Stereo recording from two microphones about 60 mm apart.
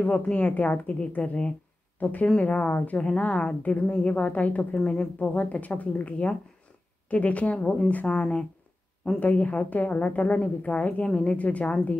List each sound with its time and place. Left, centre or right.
0.0 s a woman's voice: left